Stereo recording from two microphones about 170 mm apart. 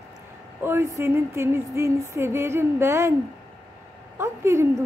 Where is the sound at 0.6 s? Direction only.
15° right (ahead or behind).